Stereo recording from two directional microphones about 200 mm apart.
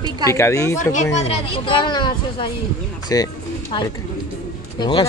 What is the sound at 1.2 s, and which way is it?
A woman's voice, 25° left (ahead or behind).